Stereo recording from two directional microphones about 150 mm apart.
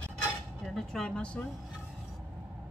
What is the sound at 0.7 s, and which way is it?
Speech, 5° left (ahead or behind).